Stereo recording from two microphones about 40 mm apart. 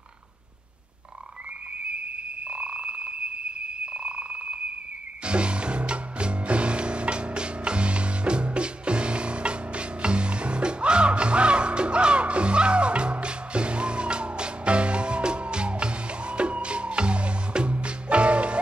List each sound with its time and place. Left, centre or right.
2.4 s a sound: right
3.8 s telephone: right
5.2 s music: right